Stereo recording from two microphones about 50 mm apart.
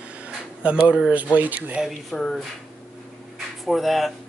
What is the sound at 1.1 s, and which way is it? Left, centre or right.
Speech, right.